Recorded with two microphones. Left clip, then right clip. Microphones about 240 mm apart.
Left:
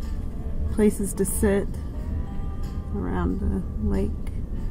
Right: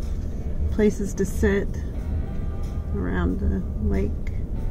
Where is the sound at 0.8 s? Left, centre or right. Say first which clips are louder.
Even; centre.